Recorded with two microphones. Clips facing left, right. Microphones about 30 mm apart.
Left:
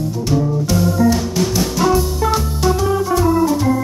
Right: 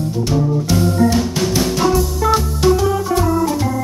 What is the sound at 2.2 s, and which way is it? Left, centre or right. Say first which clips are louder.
Music: right 2 dB; centre.